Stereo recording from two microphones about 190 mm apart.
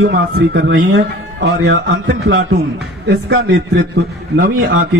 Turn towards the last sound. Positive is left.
turn(degrees=-60)  # may be behind; listen again after turning